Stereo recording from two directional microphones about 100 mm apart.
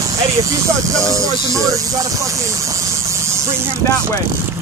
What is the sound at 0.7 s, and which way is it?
Speech, 35° right (ahead or behind).